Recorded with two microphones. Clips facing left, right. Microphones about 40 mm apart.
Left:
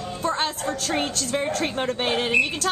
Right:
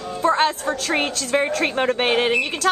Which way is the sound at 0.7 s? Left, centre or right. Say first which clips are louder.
Right 4 dB; right.